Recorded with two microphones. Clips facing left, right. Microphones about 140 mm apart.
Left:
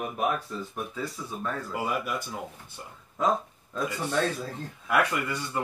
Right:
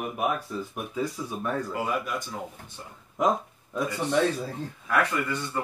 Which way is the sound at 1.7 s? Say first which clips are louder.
Right 1 dB; 5° left (ahead or behind).